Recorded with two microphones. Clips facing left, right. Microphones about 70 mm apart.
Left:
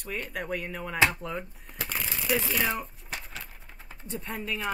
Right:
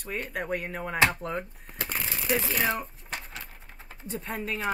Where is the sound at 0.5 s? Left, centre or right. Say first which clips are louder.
Right 2 dB; centre.